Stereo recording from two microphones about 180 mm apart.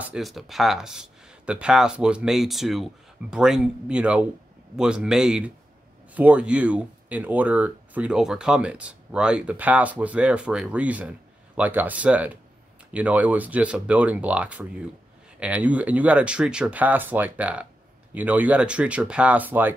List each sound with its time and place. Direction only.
0.0 s speech: centre (ahead or behind)